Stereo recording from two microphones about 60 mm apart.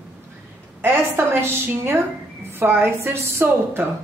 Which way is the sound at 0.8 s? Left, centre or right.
Right.